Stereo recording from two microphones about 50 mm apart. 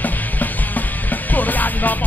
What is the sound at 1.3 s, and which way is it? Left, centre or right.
Music, left.